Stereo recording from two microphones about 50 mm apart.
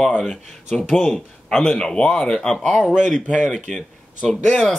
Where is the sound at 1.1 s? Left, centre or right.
Centre.